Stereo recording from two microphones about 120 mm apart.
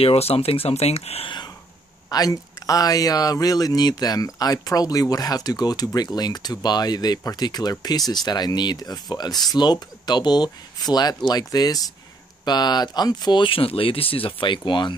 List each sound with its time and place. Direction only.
0.0 s speech: 55° left (ahead or behind)
2.0 s speech: 35° left (ahead or behind)